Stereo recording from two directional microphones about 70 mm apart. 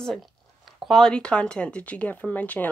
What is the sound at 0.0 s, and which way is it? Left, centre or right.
Zipper, centre.